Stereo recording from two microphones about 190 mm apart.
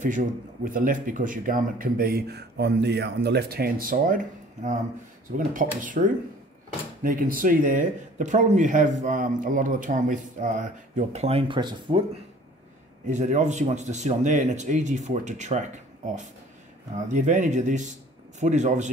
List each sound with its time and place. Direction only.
0.0 s speech: 45° right (ahead or behind); by 12.0 s 25° right (ahead or behind)
13.0 s speech: 40° right (ahead or behind)
16.9 s speech: 40° right (ahead or behind)